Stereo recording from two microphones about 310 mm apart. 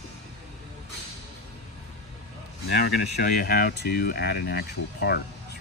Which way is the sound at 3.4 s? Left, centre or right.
Left.